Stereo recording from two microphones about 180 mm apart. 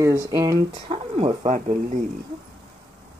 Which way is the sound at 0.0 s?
15° right (ahead or behind).